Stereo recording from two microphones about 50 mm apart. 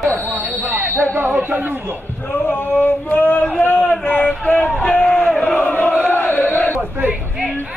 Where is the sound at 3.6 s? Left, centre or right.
Left.